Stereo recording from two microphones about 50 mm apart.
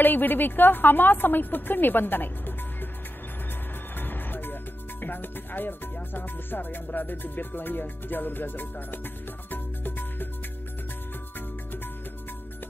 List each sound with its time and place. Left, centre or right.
0.0 s music: left
3.9 s music: left
11.3 s music: left